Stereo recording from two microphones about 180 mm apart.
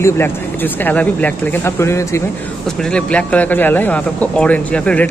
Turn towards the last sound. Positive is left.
turn(degrees=5)  # may be behind; listen again after turning